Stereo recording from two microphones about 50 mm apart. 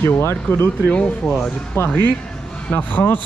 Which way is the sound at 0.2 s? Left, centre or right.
Left.